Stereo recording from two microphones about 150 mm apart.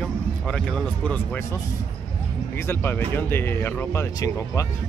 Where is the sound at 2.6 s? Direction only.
15° left (ahead or behind).